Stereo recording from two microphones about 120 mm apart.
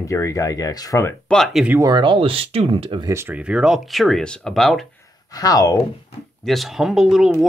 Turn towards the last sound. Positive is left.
turn(degrees=0)  # may be behind; listen again after turning